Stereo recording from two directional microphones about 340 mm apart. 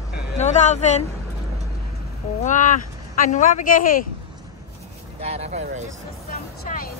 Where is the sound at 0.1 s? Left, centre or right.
Left.